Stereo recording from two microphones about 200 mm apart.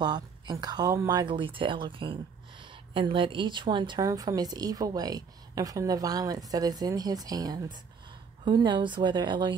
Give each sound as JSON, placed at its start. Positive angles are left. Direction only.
{"t": 0.0, "sound": "speech", "side_deg": -20}